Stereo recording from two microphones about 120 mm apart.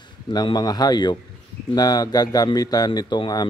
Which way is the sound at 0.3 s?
35° left (ahead or behind).